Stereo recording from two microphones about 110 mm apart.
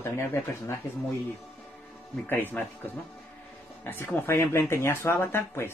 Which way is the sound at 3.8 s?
20° left (ahead or behind).